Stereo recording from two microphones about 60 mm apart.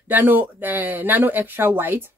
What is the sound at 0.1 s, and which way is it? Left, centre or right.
Speech, right.